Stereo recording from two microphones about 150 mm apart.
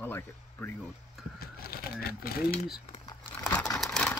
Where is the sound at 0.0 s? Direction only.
15° left (ahead or behind).